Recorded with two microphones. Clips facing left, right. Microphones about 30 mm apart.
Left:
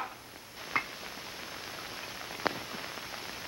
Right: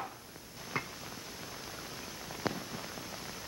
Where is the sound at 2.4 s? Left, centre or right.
Left.